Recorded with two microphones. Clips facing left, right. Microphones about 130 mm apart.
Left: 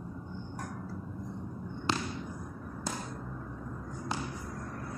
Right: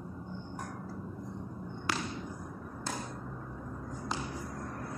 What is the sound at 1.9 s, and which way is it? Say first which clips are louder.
Basketball bounce: left 3 dB; 25° left (ahead or behind).